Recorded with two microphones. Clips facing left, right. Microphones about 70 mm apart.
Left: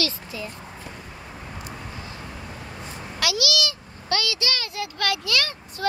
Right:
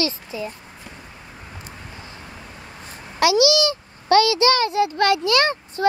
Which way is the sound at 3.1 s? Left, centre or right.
Right.